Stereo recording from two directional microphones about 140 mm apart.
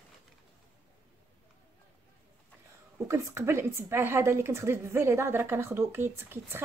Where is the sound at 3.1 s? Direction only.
20° right (ahead or behind).